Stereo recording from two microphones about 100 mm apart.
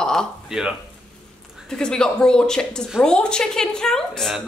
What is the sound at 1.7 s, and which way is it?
Speech, 5° left (ahead or behind).